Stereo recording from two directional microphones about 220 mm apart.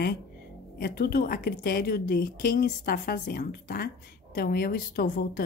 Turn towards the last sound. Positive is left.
turn(degrees=45)  # may be behind; listen again after turning